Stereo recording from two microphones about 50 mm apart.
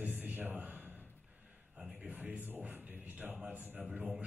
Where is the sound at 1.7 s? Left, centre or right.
Centre.